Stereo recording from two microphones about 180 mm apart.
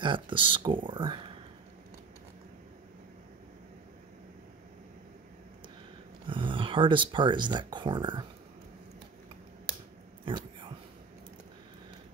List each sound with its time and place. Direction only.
0.0 s speech: 25° right (ahead or behind)
6.2 s speech: 30° right (ahead or behind)
10.2 s a sound: 30° right (ahead or behind)